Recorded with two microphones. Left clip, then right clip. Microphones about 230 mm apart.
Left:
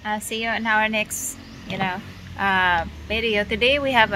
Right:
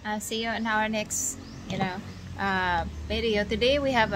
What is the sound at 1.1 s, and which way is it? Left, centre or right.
Speech, centre.